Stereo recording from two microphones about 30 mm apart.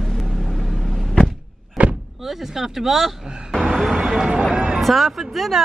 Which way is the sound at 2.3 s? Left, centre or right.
Centre.